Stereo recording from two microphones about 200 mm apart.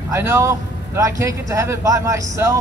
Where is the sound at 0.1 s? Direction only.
15° right (ahead or behind).